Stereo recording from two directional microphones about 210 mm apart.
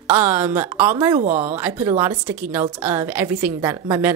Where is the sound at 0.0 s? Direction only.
10° right (ahead or behind).